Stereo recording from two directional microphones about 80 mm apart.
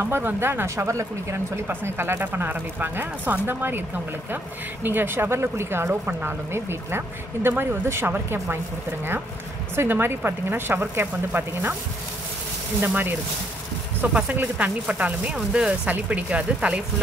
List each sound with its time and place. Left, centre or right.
0.0 s speech: right
1.7 s speech: right
4.8 s speech: right
9.8 s speech: right
12.8 s speech: right